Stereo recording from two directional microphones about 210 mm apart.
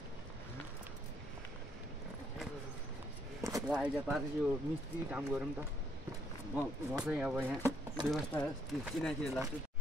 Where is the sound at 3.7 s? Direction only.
5° right (ahead or behind).